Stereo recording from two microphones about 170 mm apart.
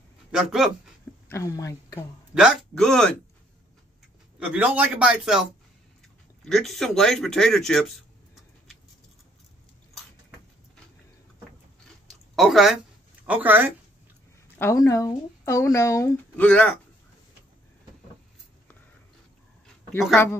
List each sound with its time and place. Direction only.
0.3 s speech: 5° right (ahead or behind)
1.3 s speech: 20° left (ahead or behind)
2.3 s speech: centre (ahead or behind)
4.4 s a man's voice: 10° right (ahead or behind)
12.4 s a man's voice: centre (ahead or behind)
14.6 s speech: 20° left (ahead or behind)
16.4 s speech: 5° left (ahead or behind)
20.2 s speech: 15° left (ahead or behind)